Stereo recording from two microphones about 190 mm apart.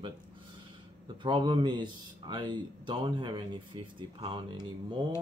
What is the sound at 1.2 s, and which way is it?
Speech, 25° right (ahead or behind).